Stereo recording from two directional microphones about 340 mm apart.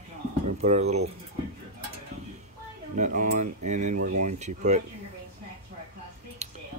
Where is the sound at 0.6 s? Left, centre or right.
Centre.